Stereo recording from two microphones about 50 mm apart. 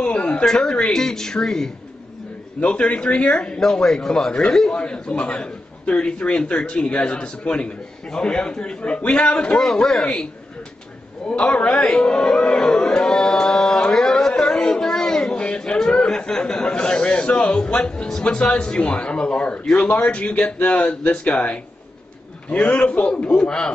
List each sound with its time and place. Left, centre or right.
0.0 s a sound: left
0.5 s speech: centre
2.7 s a man's voice: left
11.2 s speech: left
13.9 s a sound: centre; by 17.7 s left
17.7 s a man's voice: left